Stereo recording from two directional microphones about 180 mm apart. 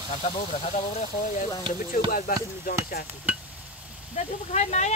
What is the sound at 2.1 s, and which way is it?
Speech, 55° left (ahead or behind).